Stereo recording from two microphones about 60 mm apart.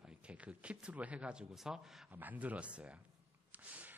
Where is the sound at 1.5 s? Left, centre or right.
Centre.